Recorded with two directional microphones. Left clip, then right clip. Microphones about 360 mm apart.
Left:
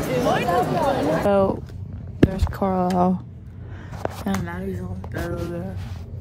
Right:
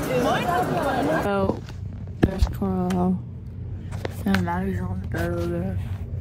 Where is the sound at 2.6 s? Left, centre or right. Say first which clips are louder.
Left 7 dB; right.